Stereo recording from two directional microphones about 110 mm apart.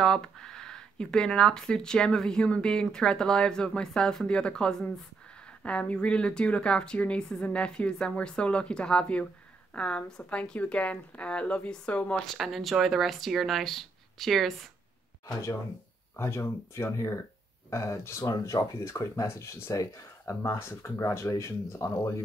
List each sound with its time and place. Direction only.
0.0 s speech: 5° left (ahead or behind)
12.4 s speech: centre (ahead or behind)
16.2 s speech: 25° left (ahead or behind)